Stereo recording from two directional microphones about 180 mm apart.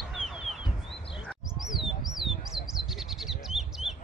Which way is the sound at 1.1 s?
Centre (ahead or behind).